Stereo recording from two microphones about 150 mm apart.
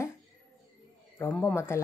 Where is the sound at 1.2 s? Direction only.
15° left (ahead or behind).